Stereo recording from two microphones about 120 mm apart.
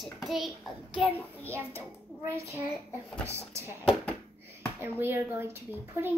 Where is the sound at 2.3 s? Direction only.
25° right (ahead or behind).